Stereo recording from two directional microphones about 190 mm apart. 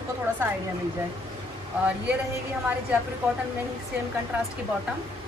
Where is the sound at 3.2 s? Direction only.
10° right (ahead or behind).